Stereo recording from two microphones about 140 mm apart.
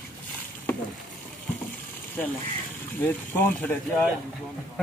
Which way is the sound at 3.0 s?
15° left (ahead or behind).